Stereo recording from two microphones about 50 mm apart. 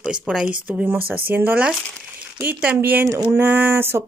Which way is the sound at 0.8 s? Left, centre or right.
Right.